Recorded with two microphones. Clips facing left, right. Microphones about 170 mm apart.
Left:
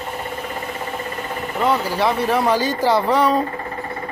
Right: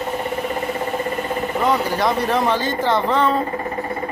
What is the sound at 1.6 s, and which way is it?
Speech, 5° left (ahead or behind).